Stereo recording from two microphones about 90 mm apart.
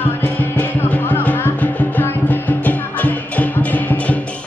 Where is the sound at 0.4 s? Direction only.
20° left (ahead or behind).